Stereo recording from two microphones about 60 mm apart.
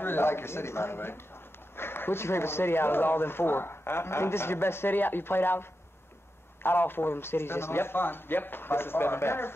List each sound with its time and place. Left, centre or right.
0.0 s speech: left